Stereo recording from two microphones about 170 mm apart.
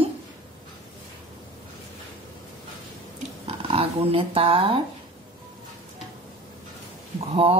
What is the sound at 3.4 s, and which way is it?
Speech, 35° right (ahead or behind).